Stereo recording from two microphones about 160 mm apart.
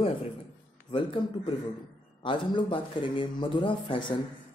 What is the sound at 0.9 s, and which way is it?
Speech, 35° left (ahead or behind).